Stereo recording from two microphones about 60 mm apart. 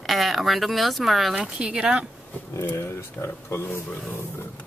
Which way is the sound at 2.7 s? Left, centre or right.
Left.